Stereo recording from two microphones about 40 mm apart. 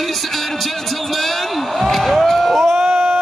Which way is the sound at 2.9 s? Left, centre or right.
Right.